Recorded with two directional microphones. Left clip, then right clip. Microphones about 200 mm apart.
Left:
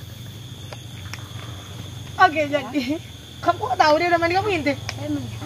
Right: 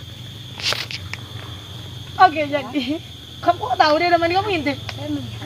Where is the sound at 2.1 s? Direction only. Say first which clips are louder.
Right 2 dB; 10° left (ahead or behind).